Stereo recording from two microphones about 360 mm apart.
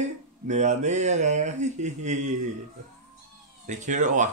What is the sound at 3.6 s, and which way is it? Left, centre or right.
Speech, centre.